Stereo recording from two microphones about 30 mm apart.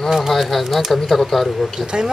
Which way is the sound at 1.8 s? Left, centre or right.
Right.